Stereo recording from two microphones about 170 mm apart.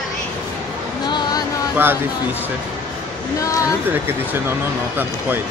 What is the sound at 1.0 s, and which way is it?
Speech, 25° left (ahead or behind).